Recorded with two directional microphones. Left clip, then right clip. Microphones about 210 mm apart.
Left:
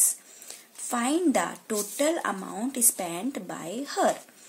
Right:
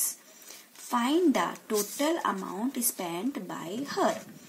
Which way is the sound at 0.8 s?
40° left (ahead or behind).